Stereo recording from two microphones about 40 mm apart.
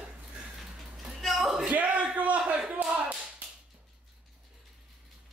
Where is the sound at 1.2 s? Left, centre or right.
Centre.